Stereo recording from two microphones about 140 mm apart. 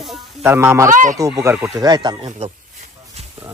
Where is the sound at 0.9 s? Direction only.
65° right (ahead or behind).